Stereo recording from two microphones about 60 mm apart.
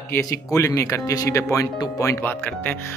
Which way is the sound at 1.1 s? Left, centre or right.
Left.